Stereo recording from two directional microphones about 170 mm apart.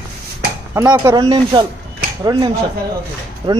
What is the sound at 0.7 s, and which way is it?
Speech, 15° right (ahead or behind).